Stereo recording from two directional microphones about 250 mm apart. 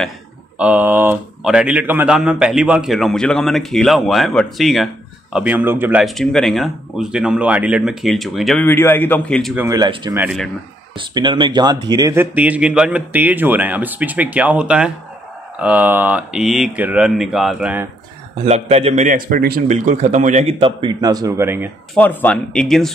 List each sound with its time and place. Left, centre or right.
0.6 s speech: centre
9.6 s speech: centre
10.2 s speech: centre
11.0 s speech: centre
18.4 s a man's voice: right
21.9 s speech: centre